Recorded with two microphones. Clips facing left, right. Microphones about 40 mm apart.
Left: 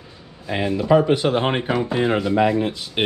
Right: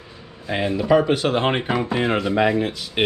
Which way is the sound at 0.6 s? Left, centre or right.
Centre.